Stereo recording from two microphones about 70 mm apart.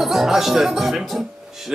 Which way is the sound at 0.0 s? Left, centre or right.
Centre.